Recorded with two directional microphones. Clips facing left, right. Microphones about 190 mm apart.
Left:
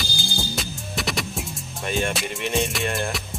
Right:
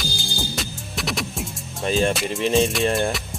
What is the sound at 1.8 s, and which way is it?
Music, 30° right (ahead or behind).